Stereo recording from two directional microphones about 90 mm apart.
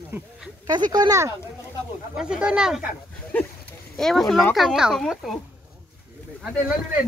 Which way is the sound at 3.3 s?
15° left (ahead or behind).